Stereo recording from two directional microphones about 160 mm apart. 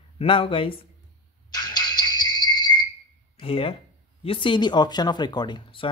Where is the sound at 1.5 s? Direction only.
25° left (ahead or behind).